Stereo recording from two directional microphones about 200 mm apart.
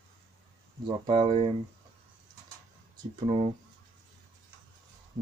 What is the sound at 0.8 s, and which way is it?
Speech, 25° right (ahead or behind).